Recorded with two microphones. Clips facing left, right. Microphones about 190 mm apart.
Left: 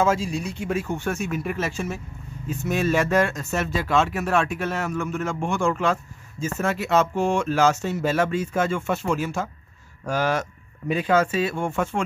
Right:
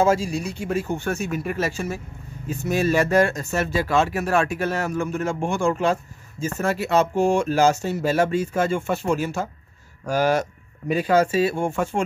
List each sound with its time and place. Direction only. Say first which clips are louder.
0.6 s speech: right 1 dB; 30° right (ahead or behind)